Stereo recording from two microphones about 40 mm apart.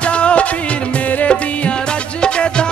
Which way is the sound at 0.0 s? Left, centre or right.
Left.